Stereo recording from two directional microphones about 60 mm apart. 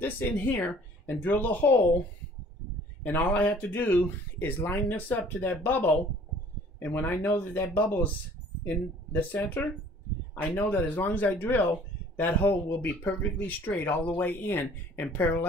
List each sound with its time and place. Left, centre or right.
0.0 s speech: left
3.0 s speech: left
7.8 s speech: left